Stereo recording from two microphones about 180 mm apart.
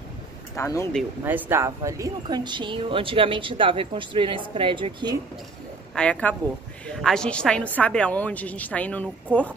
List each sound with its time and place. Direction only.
0.6 s a woman's voice: 15° left (ahead or behind)
1.2 s speech: 10° right (ahead or behind); by 5.1 s 30° right (ahead or behind)
5.9 s a woman's voice: 5° left (ahead or behind)